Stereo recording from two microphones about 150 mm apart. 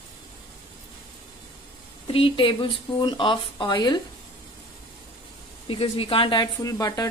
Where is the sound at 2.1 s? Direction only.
35° left (ahead or behind).